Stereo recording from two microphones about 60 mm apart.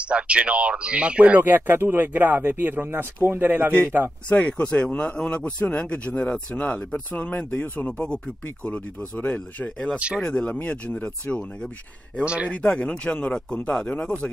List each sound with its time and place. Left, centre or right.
0.0 s speech: centre
1.5 s speech: right
4.3 s speech: left
7.8 s speech: centre
9.9 s speech: centre
10.2 s speech: centre